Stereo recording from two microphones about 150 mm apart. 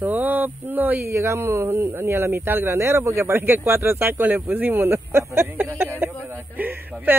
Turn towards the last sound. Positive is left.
turn(degrees=-10)  # may be behind; listen again after turning